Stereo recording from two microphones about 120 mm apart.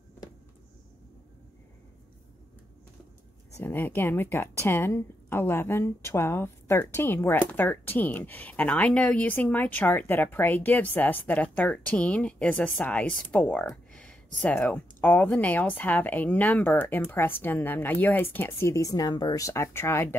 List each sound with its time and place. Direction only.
3.5 s a woman's voice: 15° left (ahead or behind)